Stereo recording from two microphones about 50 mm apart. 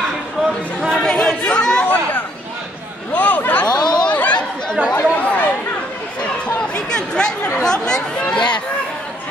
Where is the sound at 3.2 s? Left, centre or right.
Left.